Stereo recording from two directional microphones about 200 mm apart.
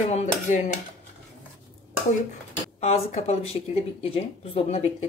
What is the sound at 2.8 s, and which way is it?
Speech, 30° left (ahead or behind).